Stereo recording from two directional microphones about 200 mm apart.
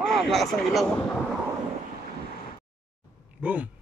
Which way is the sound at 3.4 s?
5° right (ahead or behind).